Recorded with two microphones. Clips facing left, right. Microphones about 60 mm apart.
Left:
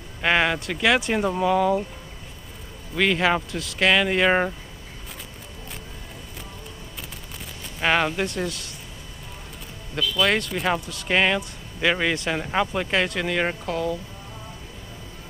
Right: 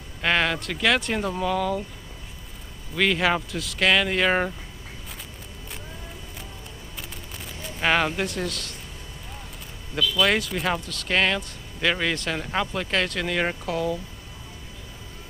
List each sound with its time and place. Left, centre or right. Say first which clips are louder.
0.2 s speech: left 2 dB; centre
3.0 s speech: left 1 dB; centre
7.6 s speech: left 1 dB; centre
10.1 s speech: left 1 dB; centre